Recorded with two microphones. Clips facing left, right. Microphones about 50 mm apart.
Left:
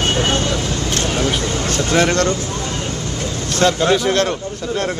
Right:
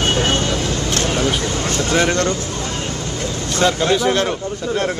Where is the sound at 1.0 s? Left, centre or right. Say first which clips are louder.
Even; right.